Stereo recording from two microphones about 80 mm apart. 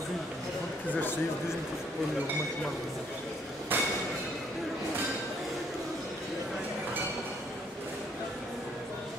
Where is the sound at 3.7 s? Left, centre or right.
Right.